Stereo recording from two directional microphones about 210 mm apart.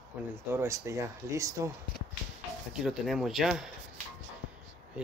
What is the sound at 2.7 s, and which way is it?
Speech, centre (ahead or behind).